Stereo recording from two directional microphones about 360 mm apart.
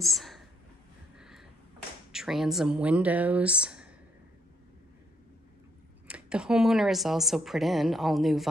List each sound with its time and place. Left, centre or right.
0.0 s speech: centre
2.1 s a woman's voice: centre
6.0 s a woman's voice: centre